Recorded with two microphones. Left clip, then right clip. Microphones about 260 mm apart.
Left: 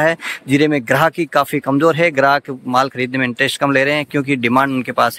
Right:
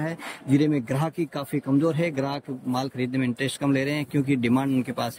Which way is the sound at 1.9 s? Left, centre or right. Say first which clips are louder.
Left 15 dB; centre.